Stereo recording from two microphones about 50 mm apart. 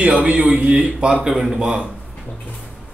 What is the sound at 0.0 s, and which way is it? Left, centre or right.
Speech, right.